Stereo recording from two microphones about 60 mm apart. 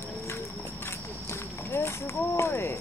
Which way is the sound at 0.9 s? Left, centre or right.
Left.